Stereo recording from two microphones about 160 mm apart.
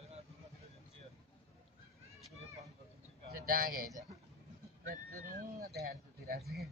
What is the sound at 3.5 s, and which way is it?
Speech, 65° right (ahead or behind).